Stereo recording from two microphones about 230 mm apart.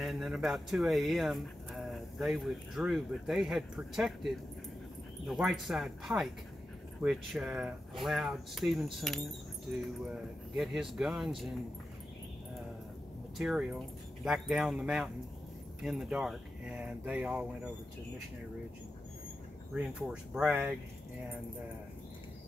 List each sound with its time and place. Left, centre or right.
0.0 s speech: centre
13.4 s speech: centre
19.7 s speech: centre